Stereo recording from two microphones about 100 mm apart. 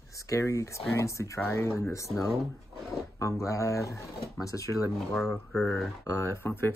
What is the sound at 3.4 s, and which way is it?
Speech, 30° left (ahead or behind).